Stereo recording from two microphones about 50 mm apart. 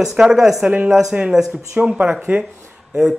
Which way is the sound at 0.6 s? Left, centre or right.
Right.